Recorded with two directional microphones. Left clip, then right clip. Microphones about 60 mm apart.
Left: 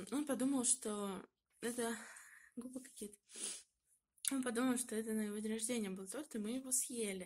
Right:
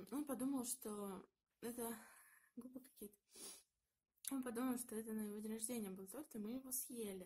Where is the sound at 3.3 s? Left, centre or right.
Right.